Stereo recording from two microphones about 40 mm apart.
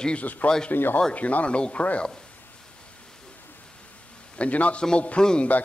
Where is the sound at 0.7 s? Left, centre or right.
Left.